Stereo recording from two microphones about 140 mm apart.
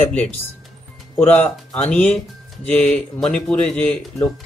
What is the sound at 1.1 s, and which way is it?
Speech, 10° left (ahead or behind).